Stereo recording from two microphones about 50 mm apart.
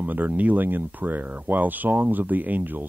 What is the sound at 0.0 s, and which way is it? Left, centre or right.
Speech, right.